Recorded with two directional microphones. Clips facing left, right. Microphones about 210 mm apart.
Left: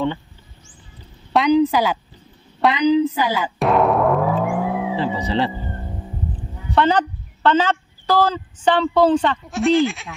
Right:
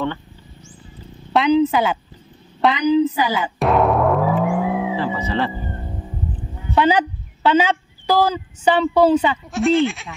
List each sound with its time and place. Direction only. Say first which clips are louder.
1.3 s speech: even; centre (ahead or behind)
2.6 s music: even; centre (ahead or behind)
4.9 s music: left 1 dB; 15° left (ahead or behind)
5.6 s music: right 1 dB; 5° right (ahead or behind)
6.7 s speech: right 1 dB; 10° right (ahead or behind)